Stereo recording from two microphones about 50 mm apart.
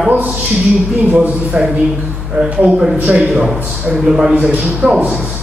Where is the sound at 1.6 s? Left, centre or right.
Centre.